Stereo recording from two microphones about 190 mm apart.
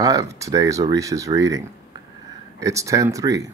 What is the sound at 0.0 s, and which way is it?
Speech, 20° right (ahead or behind).